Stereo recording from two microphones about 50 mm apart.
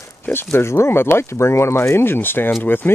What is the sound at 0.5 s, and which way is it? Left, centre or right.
Speech, left.